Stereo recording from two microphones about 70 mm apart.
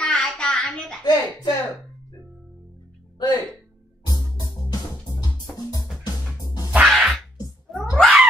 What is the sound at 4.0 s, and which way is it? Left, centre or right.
Music, left.